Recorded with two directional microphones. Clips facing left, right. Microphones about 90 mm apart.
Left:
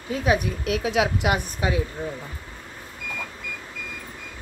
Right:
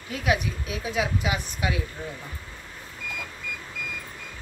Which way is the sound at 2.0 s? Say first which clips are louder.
Left 5 dB; 20° left (ahead or behind).